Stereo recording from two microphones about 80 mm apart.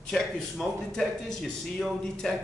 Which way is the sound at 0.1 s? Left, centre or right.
Centre.